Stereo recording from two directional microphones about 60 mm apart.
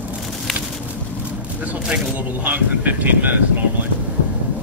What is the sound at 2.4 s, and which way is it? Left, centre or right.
Speech, right.